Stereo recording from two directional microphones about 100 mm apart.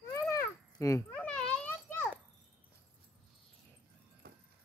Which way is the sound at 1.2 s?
15° left (ahead or behind).